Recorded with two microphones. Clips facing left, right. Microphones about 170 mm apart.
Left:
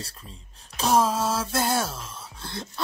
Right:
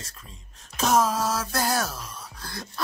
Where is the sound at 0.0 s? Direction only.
30° left (ahead or behind).